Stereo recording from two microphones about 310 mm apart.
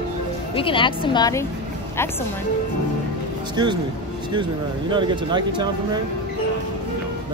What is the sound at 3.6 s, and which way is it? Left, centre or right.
Speech, centre.